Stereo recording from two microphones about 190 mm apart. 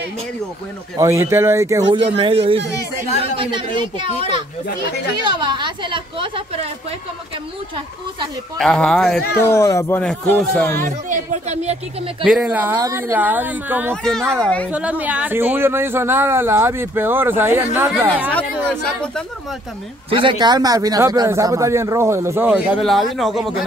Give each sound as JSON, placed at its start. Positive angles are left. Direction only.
{"t": 0.9, "sound": "a man's voice", "side_deg": -15}
{"t": 8.5, "sound": "speech", "side_deg": 5}
{"t": 9.4, "sound": "speech", "side_deg": 15}
{"t": 10.8, "sound": "speech", "side_deg": -40}
{"t": 12.2, "sound": "a man's voice", "side_deg": -5}
{"t": 14.3, "sound": "speech", "side_deg": 5}
{"t": 14.7, "sound": "a man's voice", "side_deg": -5}
{"t": 18.7, "sound": "speech", "side_deg": 5}
{"t": 20.1, "sound": "a man's voice", "side_deg": -25}